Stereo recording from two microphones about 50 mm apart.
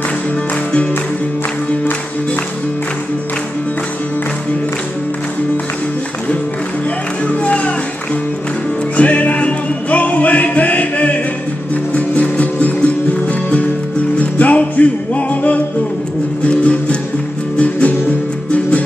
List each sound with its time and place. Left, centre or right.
7.2 s music: left
8.9 s music: left
17.6 s music: left